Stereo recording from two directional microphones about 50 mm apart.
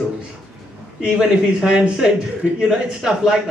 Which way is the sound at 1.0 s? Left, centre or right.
Centre.